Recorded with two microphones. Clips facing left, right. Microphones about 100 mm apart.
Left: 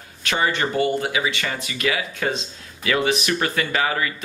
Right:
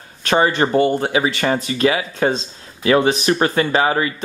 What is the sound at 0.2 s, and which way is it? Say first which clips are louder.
Speech: right 6 dB; 35° right (ahead or behind).